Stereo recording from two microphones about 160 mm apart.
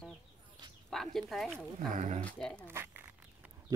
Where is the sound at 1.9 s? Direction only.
50° right (ahead or behind).